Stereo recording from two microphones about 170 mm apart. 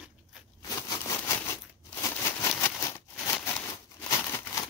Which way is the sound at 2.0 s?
15° left (ahead or behind).